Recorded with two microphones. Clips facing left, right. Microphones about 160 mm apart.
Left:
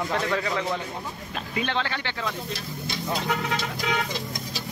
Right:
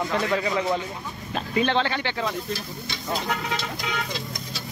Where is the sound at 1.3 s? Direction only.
35° right (ahead or behind).